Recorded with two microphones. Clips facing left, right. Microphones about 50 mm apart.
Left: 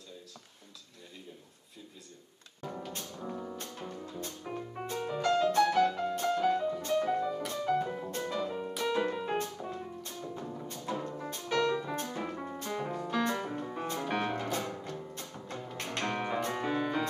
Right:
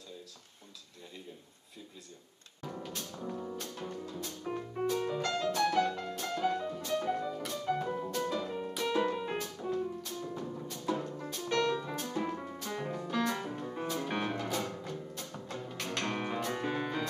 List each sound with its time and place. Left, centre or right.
2.6 s music: centre
5.2 s music: centre
9.4 s music: centre
14.5 s music: centre
15.4 s music: centre
16.2 s music: centre